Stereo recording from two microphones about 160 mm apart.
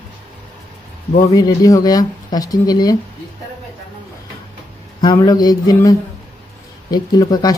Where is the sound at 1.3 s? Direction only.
20° left (ahead or behind).